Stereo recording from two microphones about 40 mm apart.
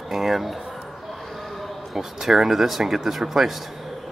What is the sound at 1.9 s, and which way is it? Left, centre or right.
Speech, centre.